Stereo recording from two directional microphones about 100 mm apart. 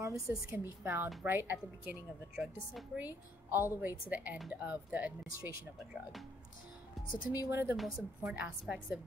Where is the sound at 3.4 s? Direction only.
20° right (ahead or behind).